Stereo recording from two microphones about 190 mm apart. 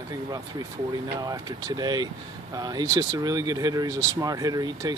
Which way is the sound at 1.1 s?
20° right (ahead or behind).